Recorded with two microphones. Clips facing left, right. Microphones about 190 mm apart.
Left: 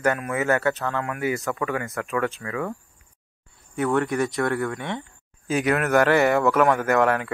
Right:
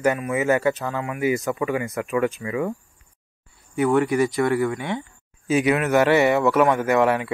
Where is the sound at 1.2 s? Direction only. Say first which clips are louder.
Right 6 dB; 15° right (ahead or behind).